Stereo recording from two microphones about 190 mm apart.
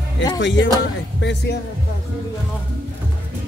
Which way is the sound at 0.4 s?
70° left (ahead or behind).